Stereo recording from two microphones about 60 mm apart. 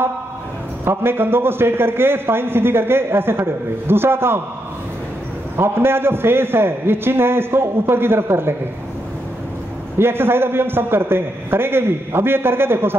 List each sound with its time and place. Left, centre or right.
0.8 s a man's voice: right
5.6 s a man's voice: right
9.9 s a man's voice: right